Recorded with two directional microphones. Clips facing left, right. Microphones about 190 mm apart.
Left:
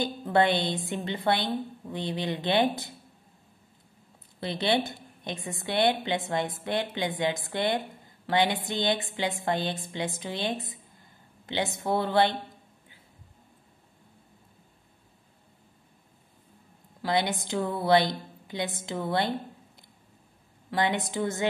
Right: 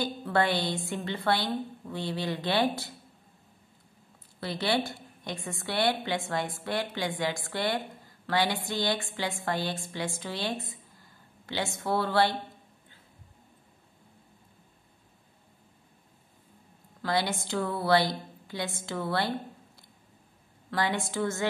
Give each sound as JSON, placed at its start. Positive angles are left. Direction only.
{"t": 0.0, "sound": "a woman's voice", "side_deg": 20}
{"t": 4.4, "sound": "a woman's voice", "side_deg": 20}
{"t": 17.0, "sound": "a woman's voice", "side_deg": 20}
{"t": 20.7, "sound": "a woman's voice", "side_deg": 20}